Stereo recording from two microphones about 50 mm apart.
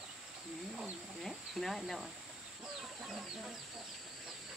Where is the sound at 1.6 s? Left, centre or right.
Centre.